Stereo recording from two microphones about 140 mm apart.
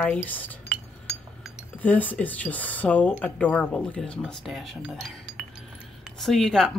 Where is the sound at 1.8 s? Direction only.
10° left (ahead or behind).